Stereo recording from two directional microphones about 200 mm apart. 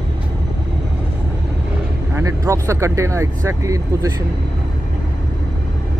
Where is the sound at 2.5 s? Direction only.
15° right (ahead or behind).